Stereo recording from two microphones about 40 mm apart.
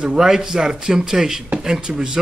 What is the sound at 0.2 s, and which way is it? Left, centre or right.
Speech, centre.